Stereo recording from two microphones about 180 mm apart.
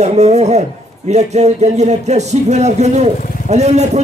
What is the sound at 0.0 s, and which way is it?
A man's voice, 40° right (ahead or behind).